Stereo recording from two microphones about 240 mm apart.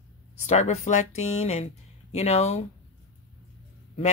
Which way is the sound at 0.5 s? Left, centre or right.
Left.